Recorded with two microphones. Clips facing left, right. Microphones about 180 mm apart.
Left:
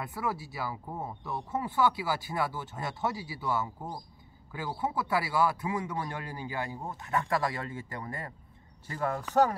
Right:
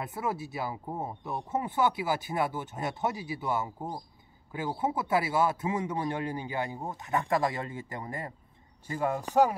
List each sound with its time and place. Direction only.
0.0 s speech: 20° right (ahead or behind)